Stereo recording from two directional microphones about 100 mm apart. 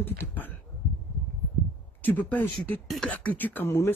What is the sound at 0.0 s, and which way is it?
Speech, 20° left (ahead or behind).